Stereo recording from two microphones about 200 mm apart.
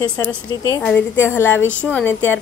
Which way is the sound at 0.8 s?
10° left (ahead or behind).